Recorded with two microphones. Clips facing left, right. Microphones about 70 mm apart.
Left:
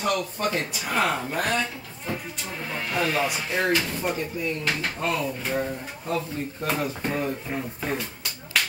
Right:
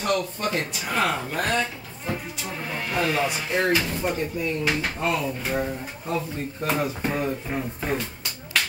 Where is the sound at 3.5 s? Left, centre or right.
Centre.